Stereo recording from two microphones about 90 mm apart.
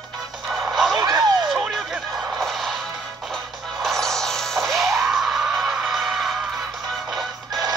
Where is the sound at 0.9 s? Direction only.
45° right (ahead or behind).